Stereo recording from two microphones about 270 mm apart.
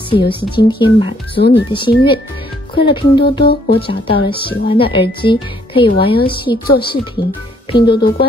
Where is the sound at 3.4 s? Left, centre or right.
Left.